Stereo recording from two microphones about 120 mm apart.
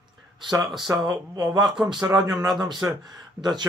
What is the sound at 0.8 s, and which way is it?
Speech, 30° right (ahead or behind).